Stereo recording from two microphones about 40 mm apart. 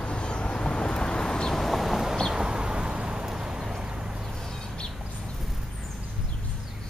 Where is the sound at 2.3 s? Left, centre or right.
Centre.